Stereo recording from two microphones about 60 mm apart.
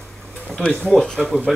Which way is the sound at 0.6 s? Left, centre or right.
Centre.